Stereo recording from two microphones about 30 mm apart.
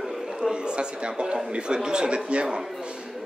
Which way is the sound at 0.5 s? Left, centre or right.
Right.